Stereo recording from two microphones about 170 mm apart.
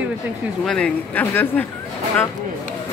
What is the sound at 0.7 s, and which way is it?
Speech, 5° left (ahead or behind).